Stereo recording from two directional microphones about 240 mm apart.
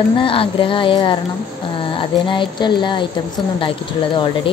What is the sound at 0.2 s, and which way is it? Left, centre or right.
Speech, left.